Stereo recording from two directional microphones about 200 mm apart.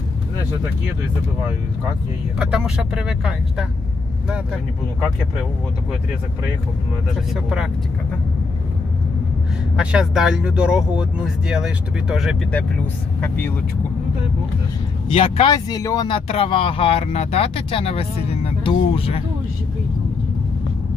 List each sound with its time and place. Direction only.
2.3 s speech: 5° right (ahead or behind)
9.8 s speech: 5° right (ahead or behind)
15.1 s speech: 30° left (ahead or behind)